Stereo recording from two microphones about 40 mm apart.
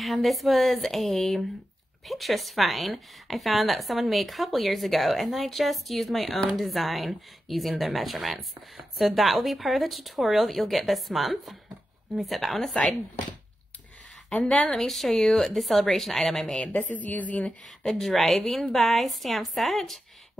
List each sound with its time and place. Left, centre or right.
0.0 s a woman's voice: centre
12.7 s speech: centre
14.7 s a woman's voice: centre
16.9 s a woman's voice: left
18.0 s a woman's voice: centre